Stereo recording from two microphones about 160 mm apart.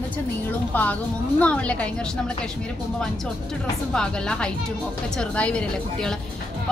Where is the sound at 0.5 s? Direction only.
10° left (ahead or behind).